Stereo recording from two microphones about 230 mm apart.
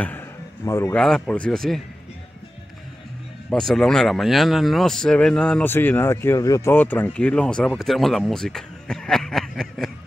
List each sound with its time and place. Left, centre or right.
0.7 s speech: centre
3.4 s speech: centre